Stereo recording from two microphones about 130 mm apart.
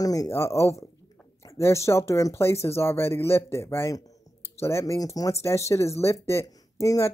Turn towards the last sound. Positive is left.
turn(degrees=25)  # may be behind; listen again after turning